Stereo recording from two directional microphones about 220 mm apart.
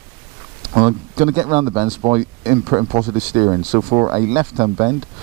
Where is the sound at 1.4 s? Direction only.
25° right (ahead or behind).